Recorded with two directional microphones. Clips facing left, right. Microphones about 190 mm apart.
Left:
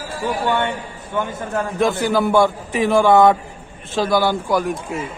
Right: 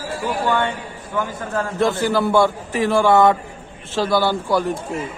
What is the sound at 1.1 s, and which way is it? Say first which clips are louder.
A man's voice: left 1 dB; 20° left (ahead or behind).